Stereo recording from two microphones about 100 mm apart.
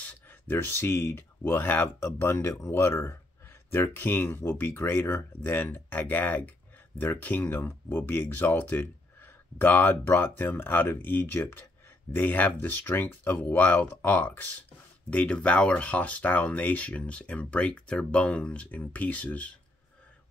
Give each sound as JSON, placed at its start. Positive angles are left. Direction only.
{"t": 0.0, "sound": "speech", "side_deg": 20}